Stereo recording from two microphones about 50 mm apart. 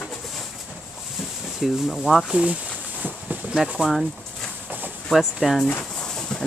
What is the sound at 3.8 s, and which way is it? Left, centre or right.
Speech, centre.